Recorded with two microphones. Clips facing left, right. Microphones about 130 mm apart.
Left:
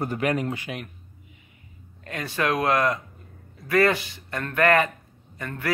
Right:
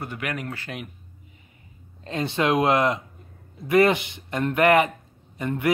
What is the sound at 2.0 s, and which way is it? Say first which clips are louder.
A man's voice: right 3 dB; 25° right (ahead or behind).